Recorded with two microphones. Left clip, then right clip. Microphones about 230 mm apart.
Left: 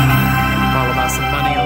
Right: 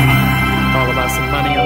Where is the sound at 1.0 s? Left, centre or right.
Centre.